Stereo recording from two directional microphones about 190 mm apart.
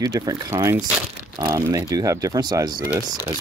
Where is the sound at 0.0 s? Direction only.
20° right (ahead or behind).